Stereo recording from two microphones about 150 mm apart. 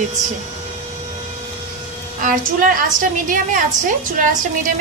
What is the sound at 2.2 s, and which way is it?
A woman's voice, 60° right (ahead or behind).